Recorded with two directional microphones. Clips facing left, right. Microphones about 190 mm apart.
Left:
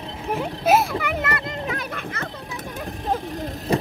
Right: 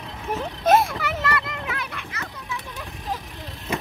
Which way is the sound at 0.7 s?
5° left (ahead or behind).